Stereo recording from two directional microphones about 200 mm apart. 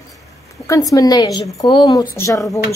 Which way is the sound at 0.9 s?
20° left (ahead or behind).